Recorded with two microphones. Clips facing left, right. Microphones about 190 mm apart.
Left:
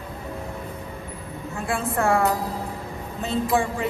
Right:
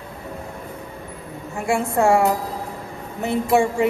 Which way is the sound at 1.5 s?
15° right (ahead or behind).